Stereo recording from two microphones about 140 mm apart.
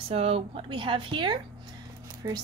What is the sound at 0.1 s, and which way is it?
Speech, 45° right (ahead or behind).